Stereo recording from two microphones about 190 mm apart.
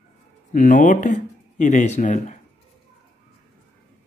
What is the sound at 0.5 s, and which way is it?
Speech, 45° left (ahead or behind).